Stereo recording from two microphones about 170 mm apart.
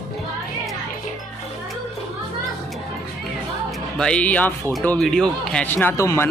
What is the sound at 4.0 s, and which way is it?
Speech, 5° left (ahead or behind).